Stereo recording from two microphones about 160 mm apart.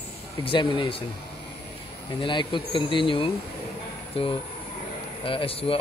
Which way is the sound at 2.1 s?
30° left (ahead or behind).